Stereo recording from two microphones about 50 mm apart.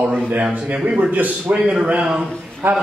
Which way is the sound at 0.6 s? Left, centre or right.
Right.